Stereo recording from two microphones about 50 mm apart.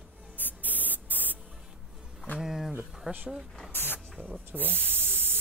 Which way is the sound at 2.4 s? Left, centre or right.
Centre.